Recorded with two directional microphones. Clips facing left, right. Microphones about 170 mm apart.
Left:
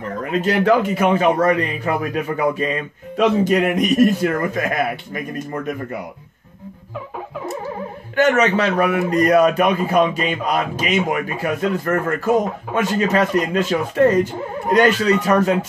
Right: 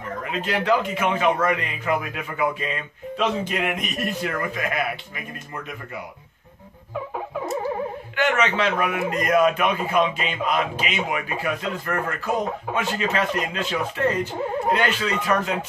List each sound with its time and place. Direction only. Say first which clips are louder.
0.3 s a man's voice: left 6 dB; 45° left (ahead or behind)
8.2 s a man's voice: left 6 dB; 40° left (ahead or behind)